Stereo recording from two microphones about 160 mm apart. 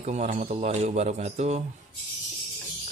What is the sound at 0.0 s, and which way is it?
A man's voice, 45° right (ahead or behind).